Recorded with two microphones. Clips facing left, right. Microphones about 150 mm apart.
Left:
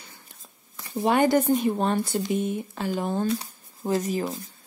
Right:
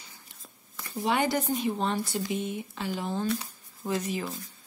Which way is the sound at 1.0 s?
50° left (ahead or behind).